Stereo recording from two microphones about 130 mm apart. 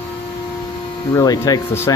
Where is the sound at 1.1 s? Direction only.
25° left (ahead or behind).